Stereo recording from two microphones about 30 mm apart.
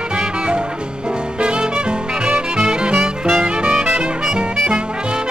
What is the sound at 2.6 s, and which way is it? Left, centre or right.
Music, right.